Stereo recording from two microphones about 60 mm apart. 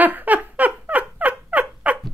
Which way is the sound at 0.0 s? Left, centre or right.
Right.